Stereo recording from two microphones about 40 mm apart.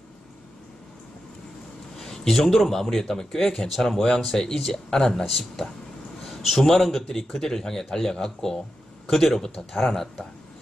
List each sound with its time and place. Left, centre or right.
2.0 s speech: centre
5.1 s a man's voice: centre